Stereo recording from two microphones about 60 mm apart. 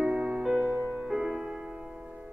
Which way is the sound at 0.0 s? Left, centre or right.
Right.